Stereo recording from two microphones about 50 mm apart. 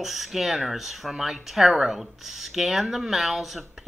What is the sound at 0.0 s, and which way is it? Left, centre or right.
Speech, centre.